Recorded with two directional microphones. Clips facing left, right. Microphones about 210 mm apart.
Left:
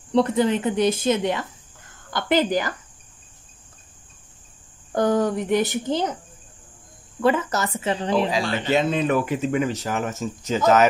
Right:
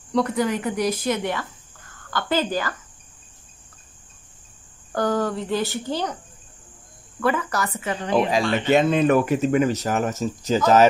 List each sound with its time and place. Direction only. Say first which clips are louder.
0.1 s a woman's voice: left 3 dB; 25° left (ahead or behind)
4.9 s speech: left 3 dB; 20° left (ahead or behind)
7.2 s speech: left 2 dB; 25° left (ahead or behind)
8.3 s speech: right 3 dB; 50° right (ahead or behind); by 10.9 s 35° right (ahead or behind)